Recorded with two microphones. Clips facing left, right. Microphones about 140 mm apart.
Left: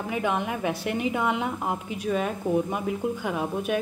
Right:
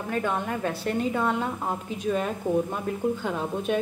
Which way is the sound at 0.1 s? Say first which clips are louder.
Even; 15° left (ahead or behind).